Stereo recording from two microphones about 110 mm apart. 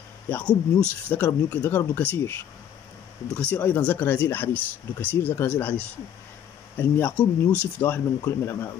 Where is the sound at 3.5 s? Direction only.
15° left (ahead or behind).